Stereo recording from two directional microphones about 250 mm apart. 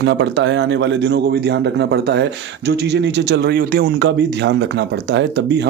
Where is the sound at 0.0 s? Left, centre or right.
Right.